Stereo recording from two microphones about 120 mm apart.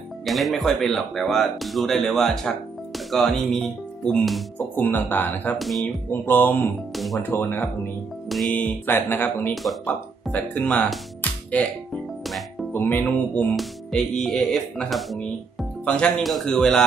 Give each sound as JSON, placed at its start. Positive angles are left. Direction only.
{"t": 0.2, "sound": "speech", "side_deg": 0}
{"t": 4.7, "sound": "speech", "side_deg": 15}
{"t": 5.6, "sound": "speech", "side_deg": 0}
{"t": 6.2, "sound": "speech", "side_deg": 15}
{"t": 8.3, "sound": "speech", "side_deg": 0}
{"t": 8.5, "sound": "speech", "side_deg": 15}
{"t": 9.5, "sound": "speech", "side_deg": 0}
{"t": 12.8, "sound": "speech", "side_deg": 10}